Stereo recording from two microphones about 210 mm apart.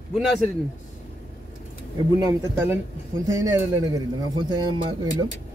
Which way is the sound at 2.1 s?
15° right (ahead or behind).